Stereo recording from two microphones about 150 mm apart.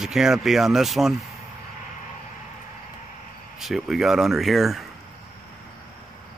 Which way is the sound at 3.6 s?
Centre (ahead or behind).